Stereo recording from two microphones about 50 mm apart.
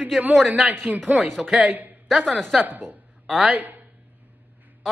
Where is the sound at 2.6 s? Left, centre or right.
Right.